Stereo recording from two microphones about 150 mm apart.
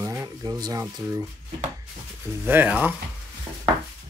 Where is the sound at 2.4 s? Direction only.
10° right (ahead or behind).